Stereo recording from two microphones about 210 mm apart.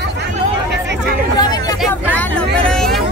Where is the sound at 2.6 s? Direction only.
Centre (ahead or behind).